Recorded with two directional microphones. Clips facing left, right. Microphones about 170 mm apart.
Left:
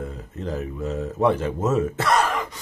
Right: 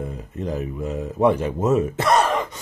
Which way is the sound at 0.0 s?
15° right (ahead or behind).